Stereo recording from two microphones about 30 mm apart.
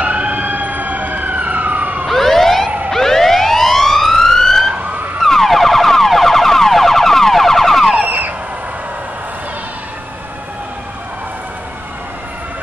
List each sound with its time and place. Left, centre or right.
0.0 s emergency vehicle: right
2.0 s emergency vehicle: centre
2.9 s police car: centre
5.2 s car alarm: centre